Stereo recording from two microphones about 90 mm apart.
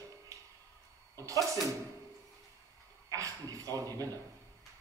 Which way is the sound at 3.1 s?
40° right (ahead or behind).